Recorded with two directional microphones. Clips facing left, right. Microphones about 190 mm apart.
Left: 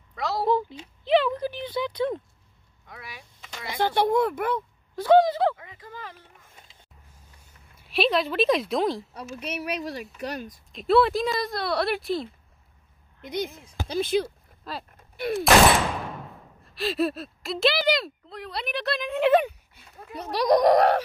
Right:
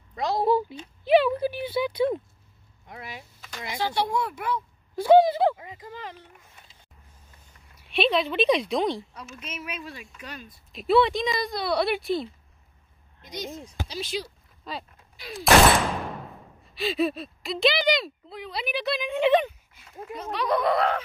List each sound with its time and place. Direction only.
0.1 s a woman's voice: 20° right (ahead or behind)
0.5 s speech: 10° right (ahead or behind)
2.9 s speech: 25° right (ahead or behind)
3.6 s a woman's voice: 55° left (ahead or behind)
4.9 s speech: 10° right (ahead or behind)
7.9 s speech: centre (ahead or behind)
9.6 s speech: 35° left (ahead or behind)
10.7 s speech: centre (ahead or behind)
13.2 s a woman's voice: 55° left (ahead or behind)
14.6 s speech: centre (ahead or behind)
15.2 s fusillade: 55° left (ahead or behind)
16.7 s speech: centre (ahead or behind)
20.4 s speech: 40° left (ahead or behind)